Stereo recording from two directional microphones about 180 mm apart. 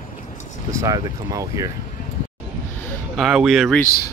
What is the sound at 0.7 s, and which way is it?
Speech, 20° right (ahead or behind).